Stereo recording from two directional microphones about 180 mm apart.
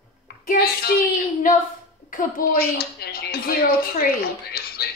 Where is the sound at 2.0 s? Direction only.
50° left (ahead or behind).